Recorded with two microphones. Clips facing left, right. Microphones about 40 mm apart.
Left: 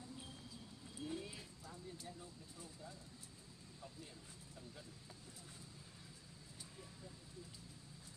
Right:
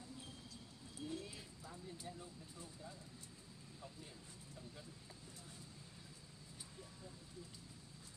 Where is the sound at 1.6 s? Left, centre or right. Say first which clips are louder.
Right 3 dB; centre.